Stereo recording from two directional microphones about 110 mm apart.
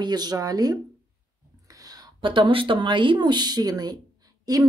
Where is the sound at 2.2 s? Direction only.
50° right (ahead or behind).